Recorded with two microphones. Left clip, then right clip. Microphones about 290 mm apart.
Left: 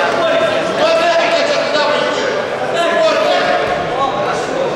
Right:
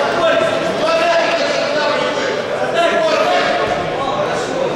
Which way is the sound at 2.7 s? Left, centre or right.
Centre.